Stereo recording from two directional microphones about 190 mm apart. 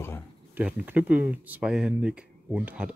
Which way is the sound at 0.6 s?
10° right (ahead or behind).